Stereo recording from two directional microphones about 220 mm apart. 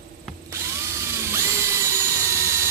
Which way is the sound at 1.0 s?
10° right (ahead or behind).